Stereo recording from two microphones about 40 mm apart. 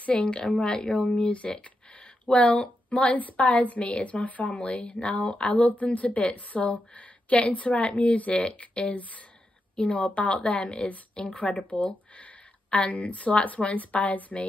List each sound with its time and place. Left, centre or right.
0.0 s a woman's voice: left
0.3 s a woman's voice: left
12.9 s a woman's voice: left